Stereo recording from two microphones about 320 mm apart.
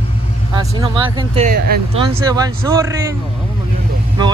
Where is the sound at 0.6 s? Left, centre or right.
Centre.